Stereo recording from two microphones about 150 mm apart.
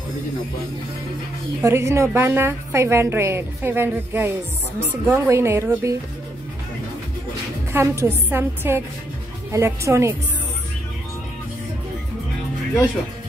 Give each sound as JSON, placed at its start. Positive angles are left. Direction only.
{"t": 1.6, "sound": "a woman's voice", "side_deg": -20}
{"t": 7.7, "sound": "a woman's voice", "side_deg": -20}